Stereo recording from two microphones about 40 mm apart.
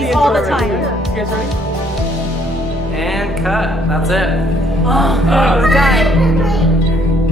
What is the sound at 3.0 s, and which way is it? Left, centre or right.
Speech, centre.